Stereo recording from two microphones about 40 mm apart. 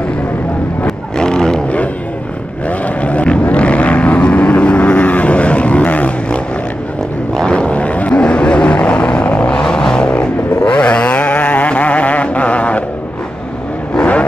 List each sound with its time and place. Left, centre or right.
0.8 s vehicle: centre
3.0 s vehicle: left
7.4 s vehicle: left
9.6 s vehicle: centre; by 12.8 s left